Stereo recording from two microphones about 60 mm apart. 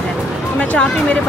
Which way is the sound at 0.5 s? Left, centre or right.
Centre.